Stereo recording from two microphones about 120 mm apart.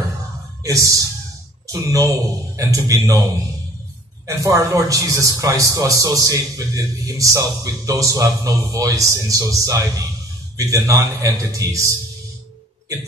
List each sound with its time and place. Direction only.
0.7 s a man's voice: 30° right (ahead or behind)
4.3 s a man's voice: 30° right (ahead or behind)